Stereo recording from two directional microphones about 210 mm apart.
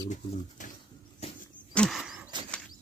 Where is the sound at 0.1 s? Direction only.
35° left (ahead or behind).